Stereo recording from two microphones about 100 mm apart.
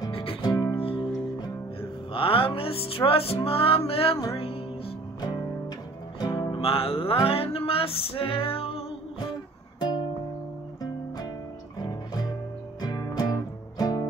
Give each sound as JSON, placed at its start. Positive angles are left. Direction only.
{"t": 0.1, "sound": "music", "side_deg": 65}
{"t": 0.5, "sound": "music", "side_deg": 35}
{"t": 0.7, "sound": "music", "side_deg": 65}
{"t": 6.1, "sound": "music", "side_deg": 40}
{"t": 6.5, "sound": "music", "side_deg": 70}
{"t": 9.8, "sound": "music", "side_deg": 45}
{"t": 11.8, "sound": "music", "side_deg": 40}